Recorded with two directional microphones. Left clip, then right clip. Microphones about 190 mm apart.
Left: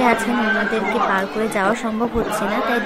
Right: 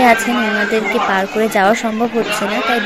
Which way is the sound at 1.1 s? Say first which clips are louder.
Right 5 dB; 20° right (ahead or behind).